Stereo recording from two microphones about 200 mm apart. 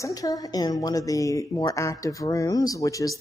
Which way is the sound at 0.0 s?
15° left (ahead or behind).